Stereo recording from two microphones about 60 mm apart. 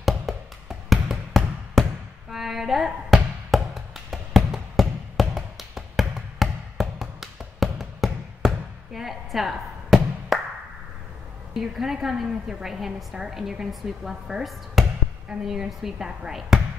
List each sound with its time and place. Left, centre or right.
0.0 s music: centre
2.3 s a sound: centre
11.5 s a woman's voice: centre